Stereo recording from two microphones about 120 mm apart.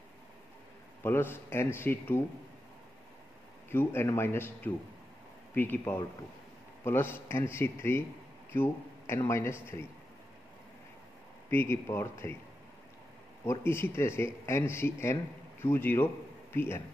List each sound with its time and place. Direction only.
1.0 s speech: 20° left (ahead or behind)
3.7 s speech: 20° left (ahead or behind)
11.5 s speech: 20° left (ahead or behind)
13.5 s speech: 20° left (ahead or behind)